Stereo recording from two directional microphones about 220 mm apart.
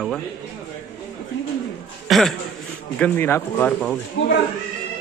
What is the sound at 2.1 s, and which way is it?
Speech, centre (ahead or behind).